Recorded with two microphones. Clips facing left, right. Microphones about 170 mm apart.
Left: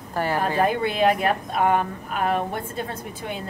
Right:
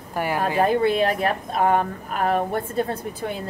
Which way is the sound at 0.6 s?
35° right (ahead or behind).